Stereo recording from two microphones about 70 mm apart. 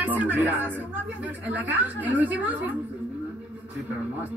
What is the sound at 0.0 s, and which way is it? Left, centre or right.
A man's voice, right.